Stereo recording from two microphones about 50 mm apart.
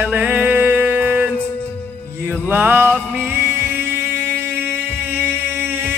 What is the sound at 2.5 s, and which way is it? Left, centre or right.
Music, right.